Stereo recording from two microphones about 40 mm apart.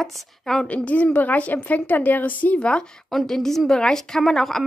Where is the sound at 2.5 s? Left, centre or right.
Left.